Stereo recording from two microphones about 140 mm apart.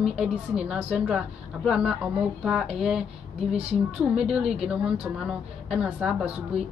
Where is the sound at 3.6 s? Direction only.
45° right (ahead or behind).